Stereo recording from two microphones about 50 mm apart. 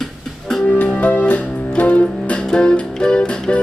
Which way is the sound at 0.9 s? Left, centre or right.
Left.